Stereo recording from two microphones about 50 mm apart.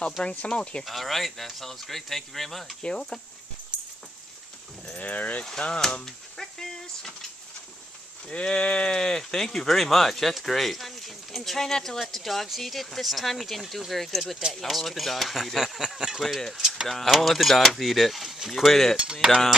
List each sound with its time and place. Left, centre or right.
0.2 s speech: left
0.8 s speech: centre
2.8 s speech: centre
4.9 s speech: left
5.6 s a sound: centre
8.3 s speech: left; by 16.8 s centre
16.8 s speech: centre
19.2 s a sound: centre